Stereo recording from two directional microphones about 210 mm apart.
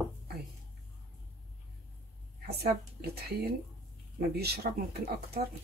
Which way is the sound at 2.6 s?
50° right (ahead or behind).